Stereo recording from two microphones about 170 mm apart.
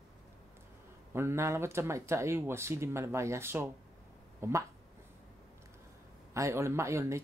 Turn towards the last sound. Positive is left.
turn(degrees=-15)  # may be behind; listen again after turning